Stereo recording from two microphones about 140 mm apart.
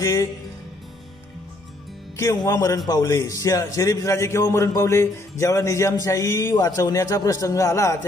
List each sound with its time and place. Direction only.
0.0 s music: 20° left (ahead or behind)
2.1 s a man's voice: 25° left (ahead or behind)